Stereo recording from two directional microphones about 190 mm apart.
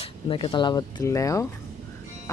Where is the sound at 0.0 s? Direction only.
25° left (ahead or behind).